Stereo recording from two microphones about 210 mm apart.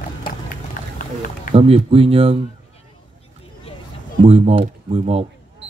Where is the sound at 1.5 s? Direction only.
25° right (ahead or behind).